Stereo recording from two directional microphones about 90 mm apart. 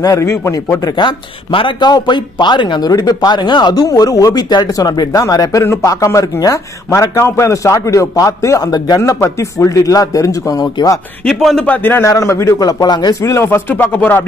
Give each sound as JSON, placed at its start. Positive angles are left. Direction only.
{"t": 0.0, "sound": "a man's voice", "side_deg": 35}
{"t": 9.2, "sound": "a man's voice", "side_deg": 30}
{"t": 11.2, "sound": "a man's voice", "side_deg": 5}
{"t": 11.6, "sound": "speech", "side_deg": 20}
{"t": 12.1, "sound": "a man's voice", "side_deg": 35}
{"t": 13.2, "sound": "speech", "side_deg": 30}